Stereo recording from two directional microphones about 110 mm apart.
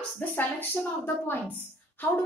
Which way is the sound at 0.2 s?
15° left (ahead or behind).